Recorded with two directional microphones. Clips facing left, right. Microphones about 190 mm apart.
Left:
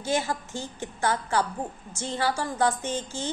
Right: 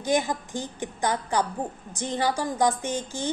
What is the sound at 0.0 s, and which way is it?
A woman's voice, 15° right (ahead or behind).